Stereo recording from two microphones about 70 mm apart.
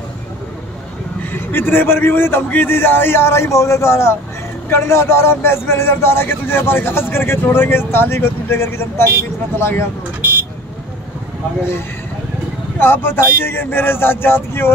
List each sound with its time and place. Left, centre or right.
1.2 s a man's voice: left
12.7 s a man's voice: left